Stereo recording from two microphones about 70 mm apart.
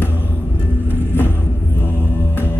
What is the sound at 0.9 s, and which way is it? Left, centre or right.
Music, left.